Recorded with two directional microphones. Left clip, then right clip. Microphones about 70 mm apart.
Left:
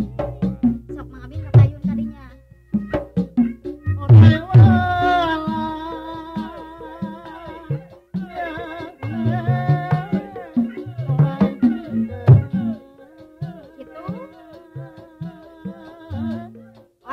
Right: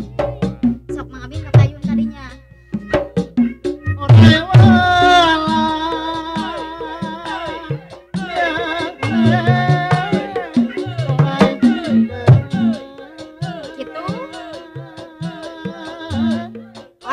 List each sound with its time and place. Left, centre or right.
0.0 s music: left
1.8 s music: left
2.9 s music: left